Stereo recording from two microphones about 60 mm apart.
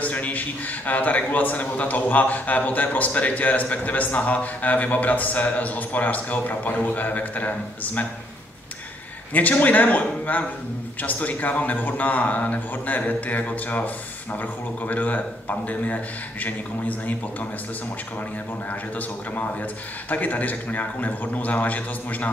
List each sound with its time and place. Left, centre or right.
0.0 s a man's voice: left
9.3 s a man's voice: left
18.7 s a man's voice: left